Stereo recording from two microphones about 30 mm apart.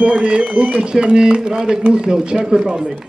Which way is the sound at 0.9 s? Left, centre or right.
Right.